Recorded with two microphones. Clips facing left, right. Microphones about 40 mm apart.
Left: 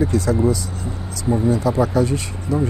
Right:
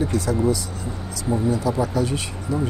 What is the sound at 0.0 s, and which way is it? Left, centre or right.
Speech, left.